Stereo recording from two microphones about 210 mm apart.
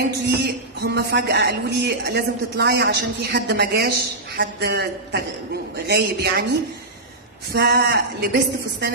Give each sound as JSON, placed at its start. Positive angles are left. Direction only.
{"t": 0.3, "sound": "speech", "side_deg": -50}
{"t": 7.5, "sound": "speech", "side_deg": -50}